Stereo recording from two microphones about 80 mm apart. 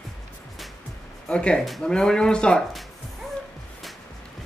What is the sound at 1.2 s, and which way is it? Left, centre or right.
Speech, centre.